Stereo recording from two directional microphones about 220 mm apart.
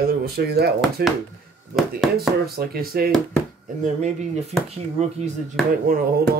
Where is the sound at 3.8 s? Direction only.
30° right (ahead or behind).